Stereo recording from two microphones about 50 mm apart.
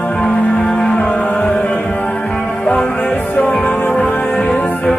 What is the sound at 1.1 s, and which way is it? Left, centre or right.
Music, left.